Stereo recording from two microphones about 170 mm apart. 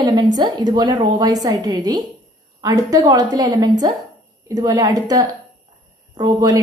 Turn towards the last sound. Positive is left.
turn(degrees=-25)  # may be behind; listen again after turning